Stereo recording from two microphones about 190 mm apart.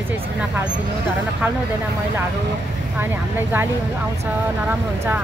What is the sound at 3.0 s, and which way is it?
Speech, 10° right (ahead or behind).